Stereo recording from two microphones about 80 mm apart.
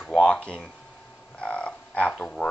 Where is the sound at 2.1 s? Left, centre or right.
Centre.